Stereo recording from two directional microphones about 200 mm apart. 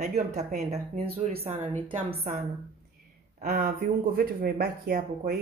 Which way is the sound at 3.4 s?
45° right (ahead or behind).